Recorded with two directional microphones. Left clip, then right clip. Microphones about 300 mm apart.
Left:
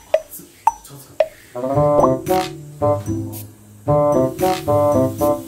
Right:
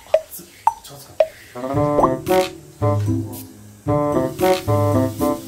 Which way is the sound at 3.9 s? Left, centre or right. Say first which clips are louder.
Left 4 dB; centre.